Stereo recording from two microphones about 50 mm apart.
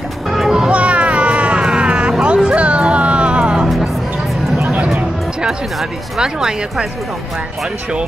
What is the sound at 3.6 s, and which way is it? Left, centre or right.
Music, centre.